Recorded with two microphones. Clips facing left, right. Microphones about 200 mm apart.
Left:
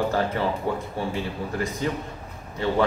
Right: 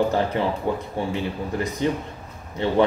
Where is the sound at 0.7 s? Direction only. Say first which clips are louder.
Right 2 dB; 20° right (ahead or behind).